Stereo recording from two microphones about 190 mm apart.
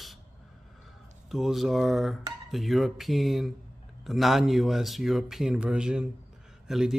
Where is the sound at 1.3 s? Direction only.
Centre (ahead or behind).